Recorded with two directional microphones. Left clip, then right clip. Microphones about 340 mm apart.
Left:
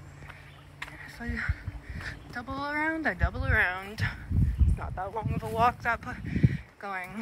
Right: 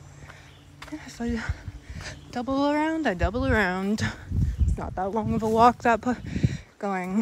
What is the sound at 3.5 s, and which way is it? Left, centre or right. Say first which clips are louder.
Speech: left 1 dB; right.